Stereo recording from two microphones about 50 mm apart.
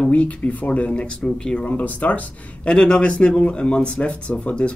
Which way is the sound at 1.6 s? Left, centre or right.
Left.